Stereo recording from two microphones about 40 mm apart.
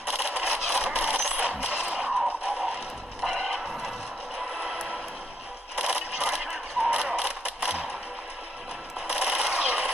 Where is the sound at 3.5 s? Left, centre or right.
Centre.